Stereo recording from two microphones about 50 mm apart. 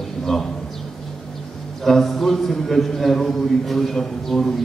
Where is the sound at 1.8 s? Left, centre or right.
Centre.